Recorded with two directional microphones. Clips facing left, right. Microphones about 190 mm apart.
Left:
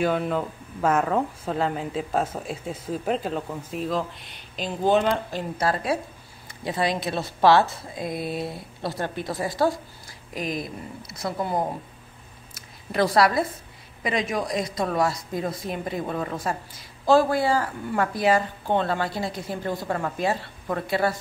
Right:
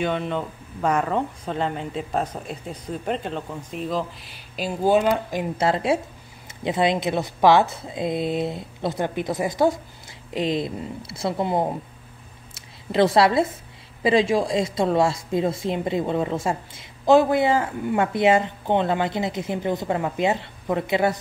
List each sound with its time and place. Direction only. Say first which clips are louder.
0.0 s speech: left 1 dB; 5° left (ahead or behind); by 5.5 s 15° right (ahead or behind)
5.6 s a woman's voice: right 3 dB; 25° right (ahead or behind)
12.5 s a sound: right 4 dB; 25° right (ahead or behind)
14.0 s a woman's voice: right 7 dB; 30° right (ahead or behind)